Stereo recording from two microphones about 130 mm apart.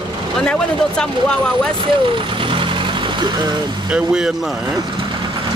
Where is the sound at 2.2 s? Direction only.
40° right (ahead or behind).